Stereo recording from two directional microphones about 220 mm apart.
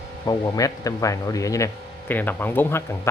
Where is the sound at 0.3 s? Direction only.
15° left (ahead or behind).